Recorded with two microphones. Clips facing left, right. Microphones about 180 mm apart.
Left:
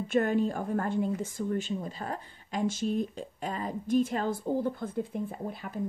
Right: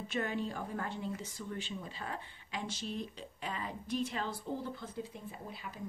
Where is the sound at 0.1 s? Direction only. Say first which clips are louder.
Left 10 dB; 50° left (ahead or behind).